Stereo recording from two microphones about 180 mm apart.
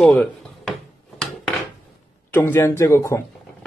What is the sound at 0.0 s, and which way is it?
Drawer open or close, 5° left (ahead or behind).